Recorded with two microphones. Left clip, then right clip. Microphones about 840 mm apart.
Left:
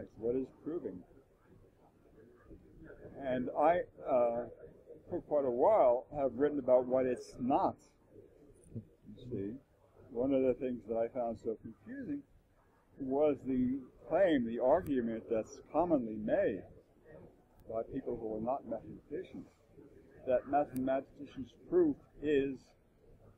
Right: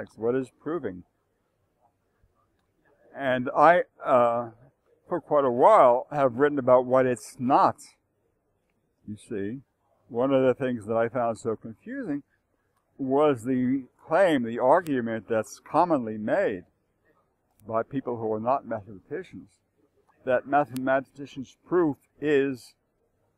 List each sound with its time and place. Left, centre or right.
0.0 s speech: right
3.2 s speech: right
9.4 s speech: right
17.7 s speech: right
20.2 s speech: right